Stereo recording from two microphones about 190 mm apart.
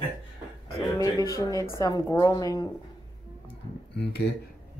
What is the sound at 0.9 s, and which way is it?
A woman's voice, 20° left (ahead or behind).